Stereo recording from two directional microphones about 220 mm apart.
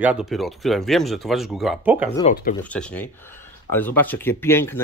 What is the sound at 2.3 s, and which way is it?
Speech, 45° left (ahead or behind).